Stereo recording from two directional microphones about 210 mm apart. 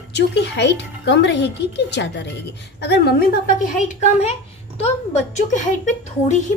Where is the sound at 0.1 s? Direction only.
55° left (ahead or behind).